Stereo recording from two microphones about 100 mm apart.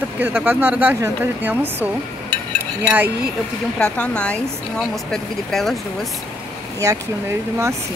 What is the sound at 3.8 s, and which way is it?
Speech, 10° left (ahead or behind).